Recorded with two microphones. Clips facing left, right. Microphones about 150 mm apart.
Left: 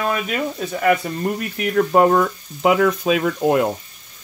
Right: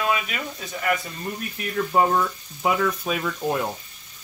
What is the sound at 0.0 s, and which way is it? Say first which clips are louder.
Speech: left 4 dB; 45° left (ahead or behind).